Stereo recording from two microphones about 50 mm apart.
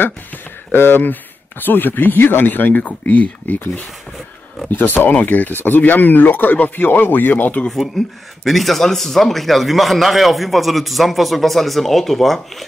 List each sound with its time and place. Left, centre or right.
0.7 s speech: left
8.0 s a man's voice: centre